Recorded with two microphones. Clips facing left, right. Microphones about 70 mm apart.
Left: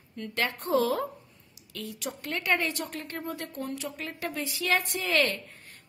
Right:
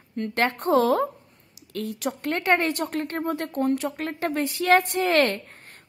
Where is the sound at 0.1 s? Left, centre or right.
Right.